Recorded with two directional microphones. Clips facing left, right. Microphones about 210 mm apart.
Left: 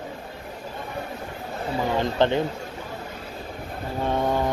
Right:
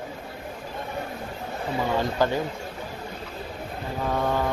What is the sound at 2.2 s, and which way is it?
Speech, 25° left (ahead or behind).